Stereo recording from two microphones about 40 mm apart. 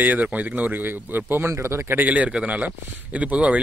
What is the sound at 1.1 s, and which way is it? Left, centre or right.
Speech, right.